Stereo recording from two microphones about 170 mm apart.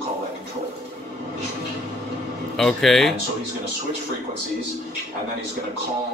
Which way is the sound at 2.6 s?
Centre (ahead or behind).